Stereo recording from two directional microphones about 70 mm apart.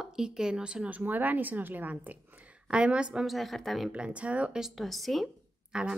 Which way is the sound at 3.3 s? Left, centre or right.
Centre.